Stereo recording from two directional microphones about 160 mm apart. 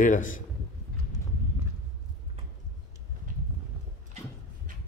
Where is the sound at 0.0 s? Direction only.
55° left (ahead or behind).